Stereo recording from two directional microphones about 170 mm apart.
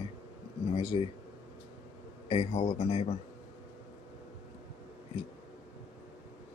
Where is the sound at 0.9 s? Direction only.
35° left (ahead or behind).